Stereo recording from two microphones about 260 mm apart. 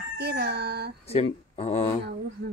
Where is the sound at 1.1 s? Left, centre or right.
Left.